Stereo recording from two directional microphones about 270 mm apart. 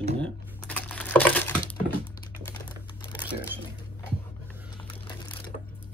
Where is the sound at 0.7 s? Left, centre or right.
Centre.